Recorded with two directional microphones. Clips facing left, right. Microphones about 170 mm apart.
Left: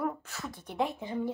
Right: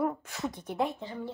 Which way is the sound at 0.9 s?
15° left (ahead or behind).